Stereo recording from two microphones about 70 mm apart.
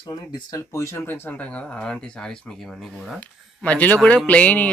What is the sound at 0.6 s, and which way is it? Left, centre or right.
Speech, left.